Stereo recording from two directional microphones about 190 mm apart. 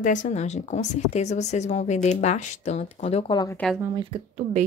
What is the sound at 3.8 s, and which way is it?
Speech, 25° right (ahead or behind).